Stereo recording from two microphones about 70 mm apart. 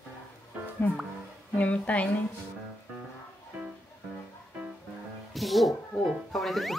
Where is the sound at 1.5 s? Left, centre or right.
Centre.